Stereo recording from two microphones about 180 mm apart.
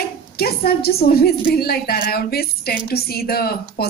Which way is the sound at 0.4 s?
60° left (ahead or behind).